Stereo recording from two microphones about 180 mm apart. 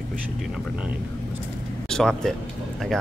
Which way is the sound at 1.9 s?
5° left (ahead or behind).